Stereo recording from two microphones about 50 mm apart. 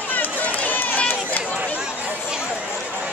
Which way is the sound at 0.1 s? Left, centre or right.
Left.